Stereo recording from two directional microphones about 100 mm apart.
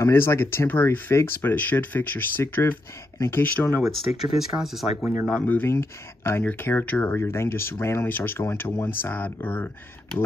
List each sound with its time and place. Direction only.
0.0 s speech: 25° left (ahead or behind)
3.8 s speech: centre (ahead or behind)
5.4 s speech: 20° left (ahead or behind)